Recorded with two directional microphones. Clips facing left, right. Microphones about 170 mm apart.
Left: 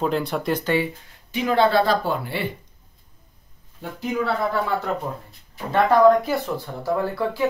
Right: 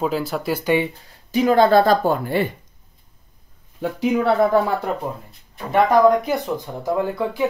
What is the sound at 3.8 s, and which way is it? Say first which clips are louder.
Speech: right 9 dB; 90° right.